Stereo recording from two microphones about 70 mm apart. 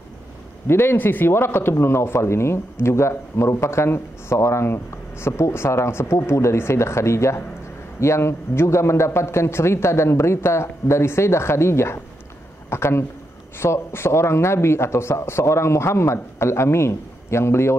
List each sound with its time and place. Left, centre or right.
0.7 s speech: left